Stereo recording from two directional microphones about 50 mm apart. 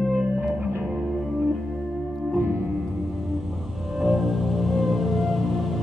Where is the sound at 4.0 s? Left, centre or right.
Centre.